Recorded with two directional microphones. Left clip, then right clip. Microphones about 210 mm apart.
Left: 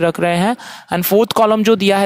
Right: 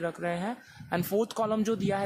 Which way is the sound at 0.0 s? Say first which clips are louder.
Left 17 dB; 45° left (ahead or behind).